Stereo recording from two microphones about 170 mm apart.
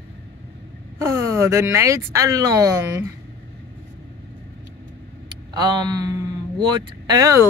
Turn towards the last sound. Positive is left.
turn(degrees=-20)  # may be behind; listen again after turning